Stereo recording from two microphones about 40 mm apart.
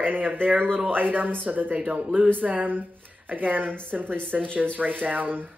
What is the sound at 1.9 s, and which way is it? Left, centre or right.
Speech, right.